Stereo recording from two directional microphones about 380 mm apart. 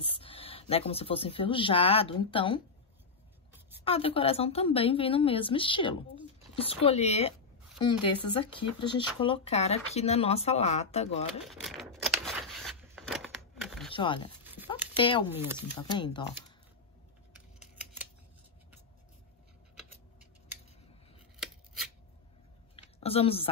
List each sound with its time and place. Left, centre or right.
0.0 s speech: centre
3.8 s speech: centre
11.4 s a sound: centre
13.9 s speech: centre
14.4 s a sound: centre
15.0 s speech: centre
15.2 s speech: centre
15.8 s speech: centre
21.4 s scissors: centre
22.8 s a sound: centre